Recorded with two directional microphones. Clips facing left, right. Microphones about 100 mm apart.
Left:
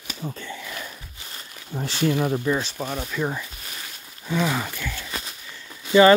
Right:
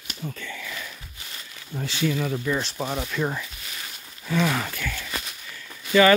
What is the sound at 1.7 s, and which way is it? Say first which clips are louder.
Speech: left 3 dB; 30° left (ahead or behind).